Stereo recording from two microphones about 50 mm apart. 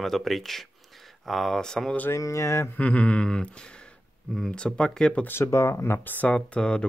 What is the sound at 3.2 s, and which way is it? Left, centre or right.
Speech, centre.